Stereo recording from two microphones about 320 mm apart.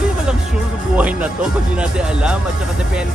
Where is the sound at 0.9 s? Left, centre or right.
Centre.